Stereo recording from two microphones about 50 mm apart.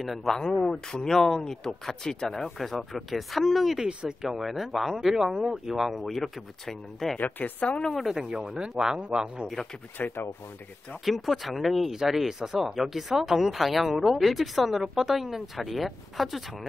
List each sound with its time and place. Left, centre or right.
0.0 s speech: centre
0.4 s speech: centre
3.7 s speech: centre
4.4 s speech: centre
7.2 s a woman's voice: left
7.6 s speech: left
8.1 s speech: centre
10.0 s a woman's voice: left
11.1 s speech: centre